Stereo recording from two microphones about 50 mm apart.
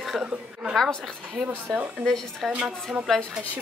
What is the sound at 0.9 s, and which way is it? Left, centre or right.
Speech, centre.